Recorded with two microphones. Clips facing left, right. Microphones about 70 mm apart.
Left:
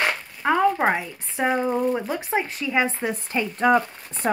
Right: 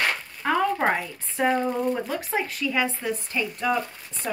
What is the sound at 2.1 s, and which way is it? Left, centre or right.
Speech, left.